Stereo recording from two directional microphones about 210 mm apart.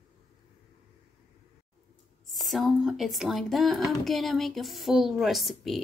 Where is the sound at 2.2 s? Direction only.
Centre (ahead or behind).